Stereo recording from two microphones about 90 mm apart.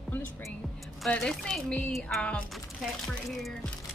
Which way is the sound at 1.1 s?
5° left (ahead or behind).